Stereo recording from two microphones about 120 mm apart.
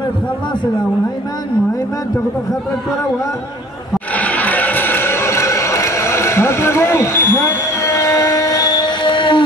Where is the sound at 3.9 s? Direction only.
10° left (ahead or behind).